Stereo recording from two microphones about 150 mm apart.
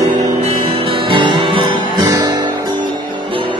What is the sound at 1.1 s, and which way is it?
Music, 35° right (ahead or behind).